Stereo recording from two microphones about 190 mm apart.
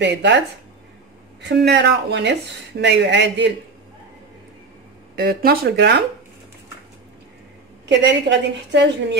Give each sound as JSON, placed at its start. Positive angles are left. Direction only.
{"t": 0.0, "sound": "speech", "side_deg": -65}
{"t": 1.4, "sound": "speech", "side_deg": -60}
{"t": 5.1, "sound": "speech", "side_deg": -55}
{"t": 7.8, "sound": "a woman's voice", "side_deg": -65}